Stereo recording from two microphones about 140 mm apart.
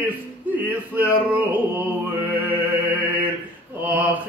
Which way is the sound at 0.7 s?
15° right (ahead or behind).